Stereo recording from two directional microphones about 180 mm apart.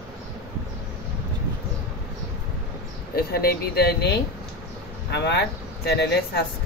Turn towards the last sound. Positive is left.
turn(degrees=65)  # may be behind; listen again after turning